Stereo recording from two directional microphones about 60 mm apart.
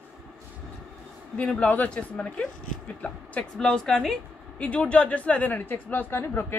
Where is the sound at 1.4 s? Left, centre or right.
Left.